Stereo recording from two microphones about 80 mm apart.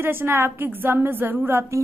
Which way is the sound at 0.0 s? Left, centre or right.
Right.